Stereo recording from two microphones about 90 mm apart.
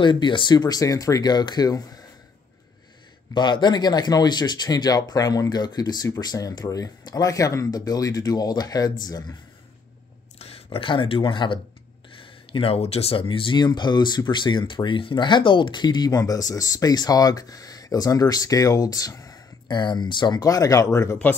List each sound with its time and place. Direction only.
0.0 s speech: 60° left (ahead or behind); by 2.0 s 45° left (ahead or behind)
3.3 s speech: 55° left (ahead or behind)
10.4 s speech: 90° left; by 13.6 s 75° left (ahead or behind)
13.6 s speech: 55° left (ahead or behind)
19.7 s speech: 55° left (ahead or behind)
20.4 s speech: 40° left (ahead or behind)